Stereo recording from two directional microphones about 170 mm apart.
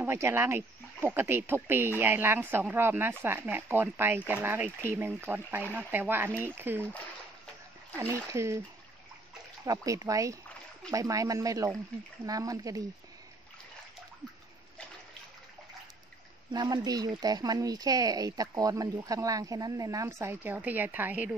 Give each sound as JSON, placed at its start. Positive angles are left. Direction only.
{"t": 0.0, "sound": "speech", "side_deg": -15}
{"t": 8.0, "sound": "speech", "side_deg": -15}
{"t": 9.7, "sound": "speech", "side_deg": -20}
{"t": 16.5, "sound": "speech", "side_deg": -25}